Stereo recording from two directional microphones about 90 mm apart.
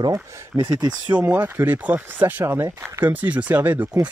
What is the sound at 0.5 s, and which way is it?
Speech, 20° right (ahead or behind).